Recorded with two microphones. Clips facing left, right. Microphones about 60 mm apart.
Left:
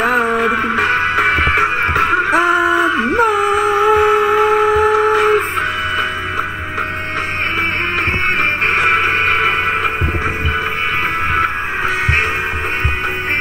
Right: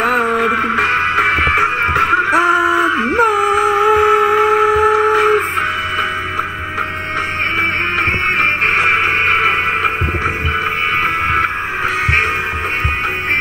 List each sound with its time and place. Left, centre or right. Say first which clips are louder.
0.0 s music: even; centre
1.2 s music: even; centre
2.3 s a sound: even; centre